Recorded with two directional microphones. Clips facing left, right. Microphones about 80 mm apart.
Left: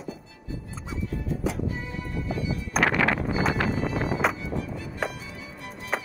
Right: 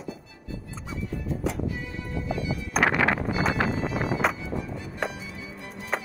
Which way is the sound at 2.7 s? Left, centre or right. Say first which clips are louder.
Even; centre.